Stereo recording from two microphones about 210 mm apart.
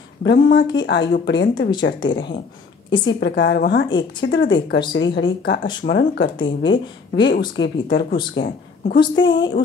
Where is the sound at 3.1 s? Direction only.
55° left (ahead or behind).